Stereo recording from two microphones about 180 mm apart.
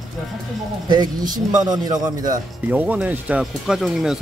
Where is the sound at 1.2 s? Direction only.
45° right (ahead or behind).